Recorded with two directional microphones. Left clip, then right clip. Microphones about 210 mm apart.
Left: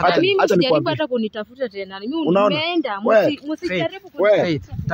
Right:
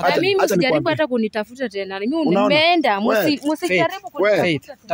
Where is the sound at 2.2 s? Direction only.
5° left (ahead or behind).